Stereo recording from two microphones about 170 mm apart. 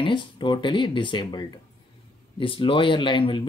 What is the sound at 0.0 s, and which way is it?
Speech, 30° left (ahead or behind).